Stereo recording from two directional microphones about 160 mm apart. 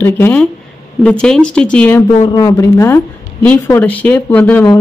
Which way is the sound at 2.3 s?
20° left (ahead or behind).